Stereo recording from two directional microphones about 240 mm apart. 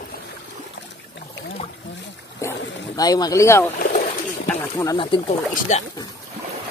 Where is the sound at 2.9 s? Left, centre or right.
Centre.